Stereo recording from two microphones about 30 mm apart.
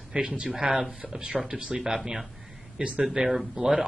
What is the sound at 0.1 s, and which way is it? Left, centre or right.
Speech, right.